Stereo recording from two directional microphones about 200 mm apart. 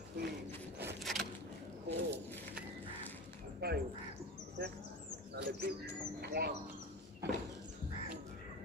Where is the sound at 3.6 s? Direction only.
50° right (ahead or behind).